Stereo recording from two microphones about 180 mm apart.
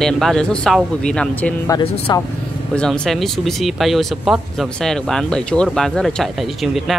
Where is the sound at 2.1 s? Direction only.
25° left (ahead or behind).